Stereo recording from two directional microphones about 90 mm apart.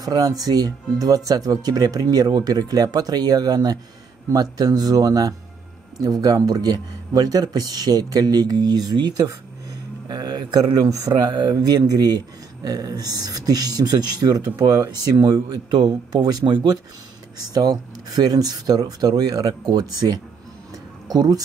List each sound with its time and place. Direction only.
0.0 s speech: 45° right (ahead or behind)